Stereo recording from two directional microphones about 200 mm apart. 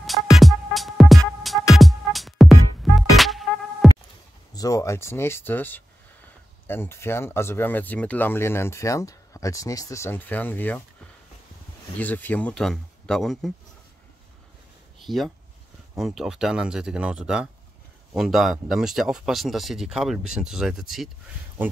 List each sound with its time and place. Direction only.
0.0 s music: centre (ahead or behind)
4.6 s speech: 15° left (ahead or behind)
12.0 s speech: 10° left (ahead or behind)
15.0 s speech: centre (ahead or behind)